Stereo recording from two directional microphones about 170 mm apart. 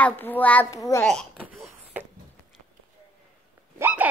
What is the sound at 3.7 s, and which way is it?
Dog, 10° right (ahead or behind).